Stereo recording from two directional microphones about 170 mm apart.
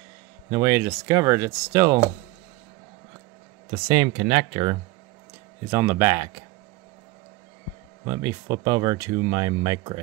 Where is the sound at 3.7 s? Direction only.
30° right (ahead or behind).